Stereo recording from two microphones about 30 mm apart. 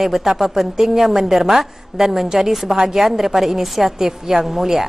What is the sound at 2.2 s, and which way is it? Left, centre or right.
A woman's voice, right.